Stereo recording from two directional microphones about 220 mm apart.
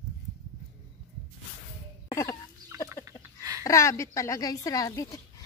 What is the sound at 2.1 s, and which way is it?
Chicken, 15° left (ahead or behind).